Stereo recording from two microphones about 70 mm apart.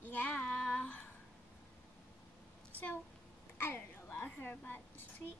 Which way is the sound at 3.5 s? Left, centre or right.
Left.